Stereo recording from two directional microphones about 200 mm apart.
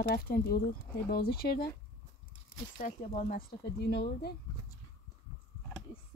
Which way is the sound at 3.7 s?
55° left (ahead or behind).